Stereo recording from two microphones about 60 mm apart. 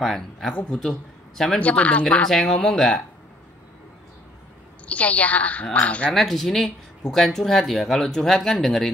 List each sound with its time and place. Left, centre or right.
0.0 s a man's voice: centre
1.6 s a woman's voice: left
2.2 s speech: centre
4.8 s a woman's voice: left
6.1 s speech: centre